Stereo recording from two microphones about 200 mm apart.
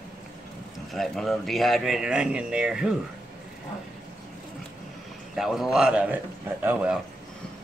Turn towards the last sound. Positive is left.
turn(degrees=-5)  # may be behind; listen again after turning